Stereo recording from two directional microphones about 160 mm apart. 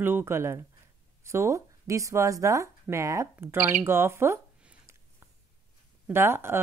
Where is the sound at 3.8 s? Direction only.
15° right (ahead or behind).